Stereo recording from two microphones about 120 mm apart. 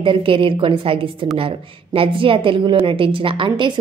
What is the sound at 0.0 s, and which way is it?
Speech, 45° right (ahead or behind).